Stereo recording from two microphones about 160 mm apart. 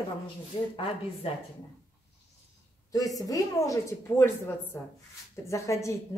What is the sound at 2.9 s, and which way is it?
A woman's voice, 20° left (ahead or behind).